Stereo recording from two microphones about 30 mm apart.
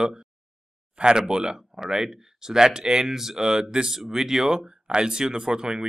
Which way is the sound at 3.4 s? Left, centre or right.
Right.